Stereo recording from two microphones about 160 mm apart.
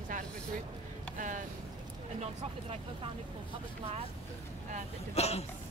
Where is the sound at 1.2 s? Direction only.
55° right (ahead or behind).